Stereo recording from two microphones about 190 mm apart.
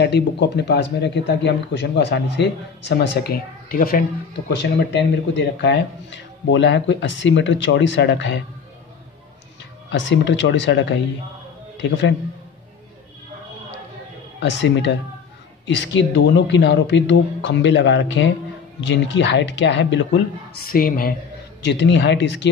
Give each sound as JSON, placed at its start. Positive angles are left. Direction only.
{"t": 0.0, "sound": "speech", "side_deg": 60}
{"t": 4.5, "sound": "speech", "side_deg": 65}
{"t": 9.8, "sound": "a man's voice", "side_deg": 70}
{"t": 14.4, "sound": "speech", "side_deg": 70}
{"t": 20.6, "sound": "a woman's voice", "side_deg": 50}
{"t": 21.6, "sound": "speech", "side_deg": 65}